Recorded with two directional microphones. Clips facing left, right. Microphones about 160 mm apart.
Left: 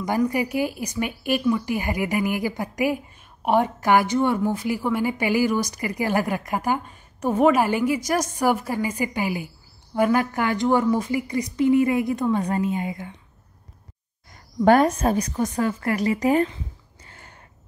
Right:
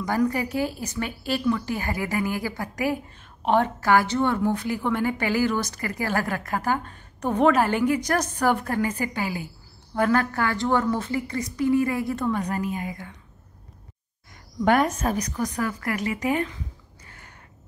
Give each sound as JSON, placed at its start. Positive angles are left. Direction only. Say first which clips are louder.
{"t": 0.2, "sound": "a woman's voice", "louder": "left 1 dB", "side_deg": 10}
{"t": 14.6, "sound": "a woman's voice", "louder": "left 4 dB", "side_deg": 35}
{"t": 17.0, "sound": "a sound", "louder": "left 2 dB", "side_deg": 30}